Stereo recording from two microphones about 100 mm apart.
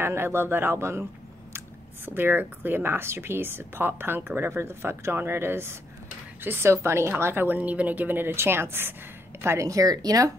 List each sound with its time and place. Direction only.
0.0 s speech: 25° right (ahead or behind)
2.0 s speech: 20° right (ahead or behind); by 10.3 s 35° right (ahead or behind)